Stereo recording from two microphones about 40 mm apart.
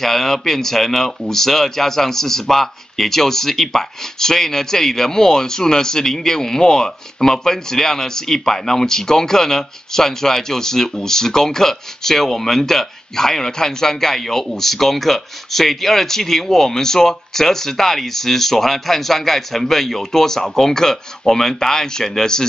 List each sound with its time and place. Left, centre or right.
0.0 s speech: centre